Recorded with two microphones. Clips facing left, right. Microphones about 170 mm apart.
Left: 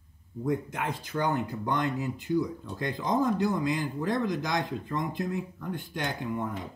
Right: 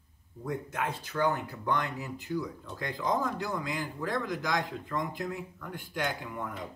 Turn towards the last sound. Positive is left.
turn(degrees=25)  # may be behind; listen again after turning